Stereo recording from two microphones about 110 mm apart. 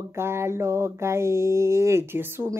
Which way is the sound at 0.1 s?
25° right (ahead or behind).